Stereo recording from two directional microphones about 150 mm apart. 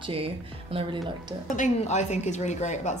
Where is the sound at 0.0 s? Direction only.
40° right (ahead or behind).